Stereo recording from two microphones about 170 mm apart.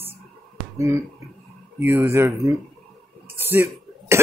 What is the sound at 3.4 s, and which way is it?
Throat clearing, 10° right (ahead or behind).